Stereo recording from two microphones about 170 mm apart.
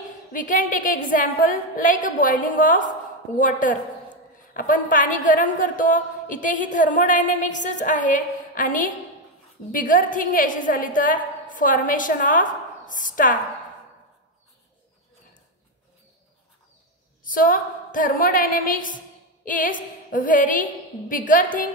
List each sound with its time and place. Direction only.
0.3 s a woman's voice: 50° left (ahead or behind)
17.2 s a woman's voice: 55° left (ahead or behind)